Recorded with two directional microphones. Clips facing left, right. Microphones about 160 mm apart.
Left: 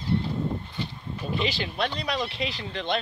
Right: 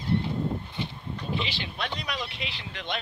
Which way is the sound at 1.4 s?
40° left (ahead or behind).